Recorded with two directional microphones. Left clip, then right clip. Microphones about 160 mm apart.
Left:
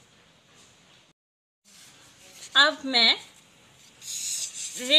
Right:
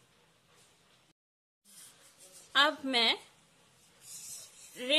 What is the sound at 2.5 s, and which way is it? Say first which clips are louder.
Speech: left 7 dB; 20° right (ahead or behind).